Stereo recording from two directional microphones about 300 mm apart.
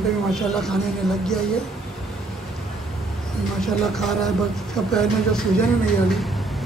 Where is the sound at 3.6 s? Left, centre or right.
Centre.